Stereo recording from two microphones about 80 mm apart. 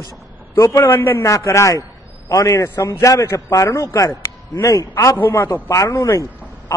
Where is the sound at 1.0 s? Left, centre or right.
Left.